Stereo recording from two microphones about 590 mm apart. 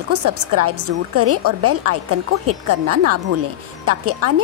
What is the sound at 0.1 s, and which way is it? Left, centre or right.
Speech, right.